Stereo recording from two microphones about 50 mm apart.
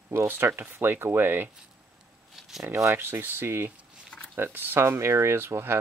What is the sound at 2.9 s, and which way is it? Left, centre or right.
Speech, right.